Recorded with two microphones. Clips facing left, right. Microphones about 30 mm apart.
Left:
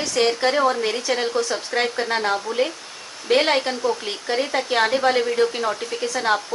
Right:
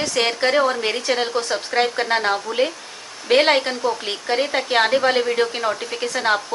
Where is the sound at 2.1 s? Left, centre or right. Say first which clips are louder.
Right 2 dB; right.